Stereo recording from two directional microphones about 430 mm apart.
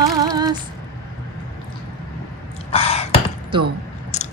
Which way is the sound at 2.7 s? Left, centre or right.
Centre.